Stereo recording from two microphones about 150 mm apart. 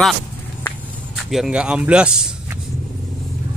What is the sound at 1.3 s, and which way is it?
Speech, 5° right (ahead or behind).